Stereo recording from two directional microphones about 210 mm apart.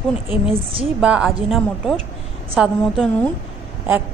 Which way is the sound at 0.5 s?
25° right (ahead or behind).